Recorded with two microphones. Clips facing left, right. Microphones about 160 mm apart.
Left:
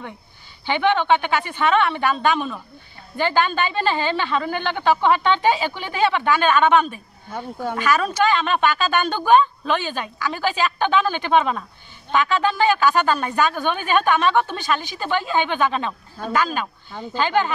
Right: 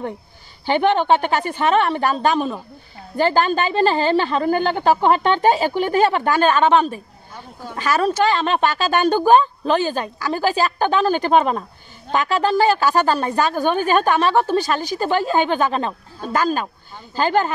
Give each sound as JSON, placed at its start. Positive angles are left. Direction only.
{"t": 0.7, "sound": "a woman's voice", "side_deg": -40}